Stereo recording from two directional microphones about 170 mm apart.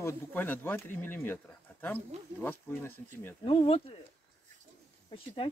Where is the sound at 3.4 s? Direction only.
35° left (ahead or behind).